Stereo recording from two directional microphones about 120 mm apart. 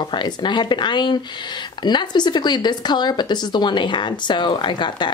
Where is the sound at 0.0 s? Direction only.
40° left (ahead or behind).